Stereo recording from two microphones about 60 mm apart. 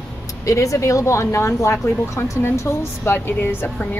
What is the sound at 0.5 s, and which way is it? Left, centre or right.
Speech, left.